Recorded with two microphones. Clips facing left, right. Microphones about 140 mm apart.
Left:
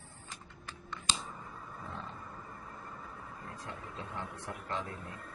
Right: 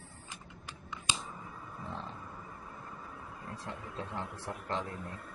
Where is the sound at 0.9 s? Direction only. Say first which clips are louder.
Even; 10° right (ahead or behind).